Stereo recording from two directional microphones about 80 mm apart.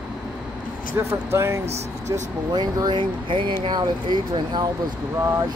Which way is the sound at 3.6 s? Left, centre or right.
Right.